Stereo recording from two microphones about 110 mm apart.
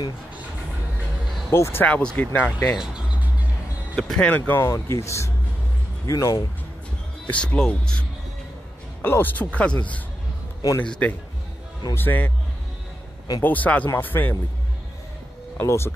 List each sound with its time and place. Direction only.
1.5 s speech: 20° left (ahead or behind)
2.8 s music: 5° right (ahead or behind)
3.9 s speech: 5° left (ahead or behind); by 6.3 s 30° left (ahead or behind)
7.2 s speech: 10° left (ahead or behind)
9.0 s speech: 20° left (ahead or behind)
13.4 s speech: 15° left (ahead or behind)
15.6 s speech: 25° left (ahead or behind)